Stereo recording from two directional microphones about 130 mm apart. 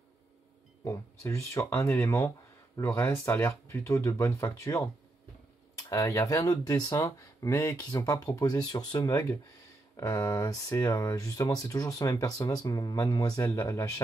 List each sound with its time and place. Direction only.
0.8 s speech: 20° left (ahead or behind)